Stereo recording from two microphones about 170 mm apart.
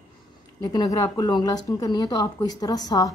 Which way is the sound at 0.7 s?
25° left (ahead or behind).